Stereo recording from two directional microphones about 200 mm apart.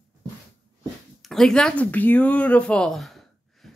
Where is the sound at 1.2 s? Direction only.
Centre (ahead or behind).